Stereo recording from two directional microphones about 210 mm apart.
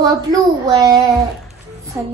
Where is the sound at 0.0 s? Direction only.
20° right (ahead or behind).